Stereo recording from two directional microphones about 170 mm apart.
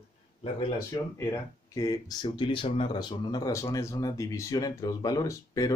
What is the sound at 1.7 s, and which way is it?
Speech, 20° left (ahead or behind).